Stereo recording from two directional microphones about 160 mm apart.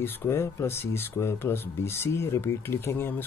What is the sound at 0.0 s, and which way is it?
Speech, 15° left (ahead or behind).